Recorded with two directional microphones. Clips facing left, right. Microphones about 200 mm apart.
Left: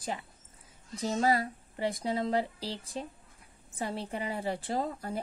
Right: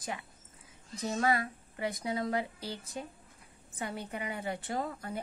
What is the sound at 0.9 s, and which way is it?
A woman's voice, 30° left (ahead or behind).